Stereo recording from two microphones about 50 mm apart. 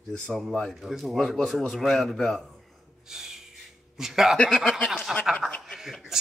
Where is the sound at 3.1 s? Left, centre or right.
Centre.